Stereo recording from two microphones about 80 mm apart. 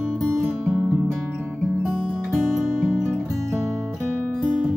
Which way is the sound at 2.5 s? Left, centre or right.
Centre.